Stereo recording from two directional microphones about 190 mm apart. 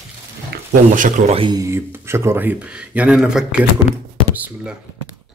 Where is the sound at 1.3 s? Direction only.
20° right (ahead or behind); by 4.8 s 5° right (ahead or behind).